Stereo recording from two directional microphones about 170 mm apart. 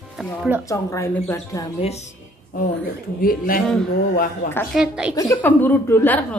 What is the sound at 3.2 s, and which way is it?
Speech, 55° left (ahead or behind).